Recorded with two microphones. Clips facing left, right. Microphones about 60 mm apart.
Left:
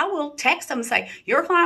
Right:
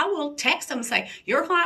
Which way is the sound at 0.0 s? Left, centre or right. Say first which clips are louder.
Left 2 dB; left.